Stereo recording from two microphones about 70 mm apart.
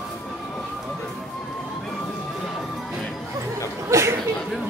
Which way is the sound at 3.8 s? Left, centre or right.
Right.